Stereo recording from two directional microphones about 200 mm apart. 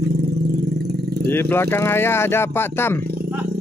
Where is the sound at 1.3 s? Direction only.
10° left (ahead or behind).